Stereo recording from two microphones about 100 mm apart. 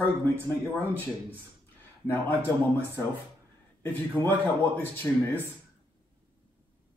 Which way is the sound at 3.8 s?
20° left (ahead or behind).